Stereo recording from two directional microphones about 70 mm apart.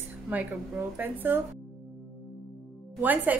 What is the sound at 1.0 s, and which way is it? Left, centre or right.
Speech, right.